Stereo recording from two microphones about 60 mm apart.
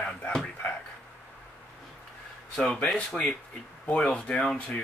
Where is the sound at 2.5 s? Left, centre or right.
Centre.